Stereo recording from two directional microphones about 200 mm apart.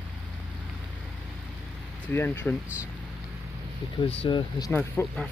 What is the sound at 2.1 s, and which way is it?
Speech, 10° left (ahead or behind).